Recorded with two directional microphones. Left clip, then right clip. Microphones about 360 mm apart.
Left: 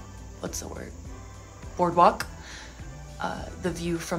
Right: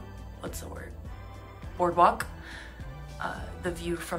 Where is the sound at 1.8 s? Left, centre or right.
Centre.